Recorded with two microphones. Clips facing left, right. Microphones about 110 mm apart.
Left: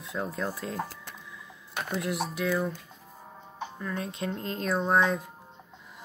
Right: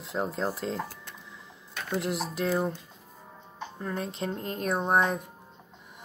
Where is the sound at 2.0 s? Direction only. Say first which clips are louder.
Even; 35° right (ahead or behind).